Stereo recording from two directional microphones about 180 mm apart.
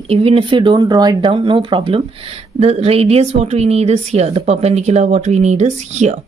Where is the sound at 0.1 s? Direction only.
35° right (ahead or behind).